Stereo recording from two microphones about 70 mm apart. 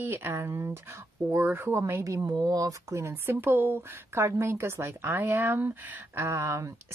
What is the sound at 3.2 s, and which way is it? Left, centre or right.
Speech, right.